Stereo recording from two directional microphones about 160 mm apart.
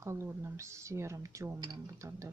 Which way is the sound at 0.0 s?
20° right (ahead or behind).